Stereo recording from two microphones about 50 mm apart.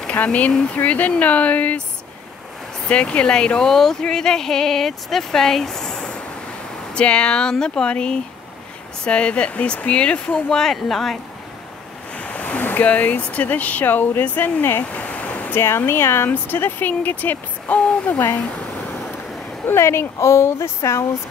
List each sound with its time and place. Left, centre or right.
0.1 s speech: left
2.9 s speech: left
3.6 s speech: centre; by 10.4 s left
10.5 s speech: centre
12.2 s speech: left
15.0 s waterfall: left
15.5 s speech: left
16.5 s speech: left
18.5 s a sound: left
19.6 s speech: left